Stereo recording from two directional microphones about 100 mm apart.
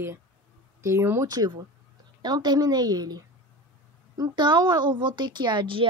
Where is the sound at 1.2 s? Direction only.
40° right (ahead or behind).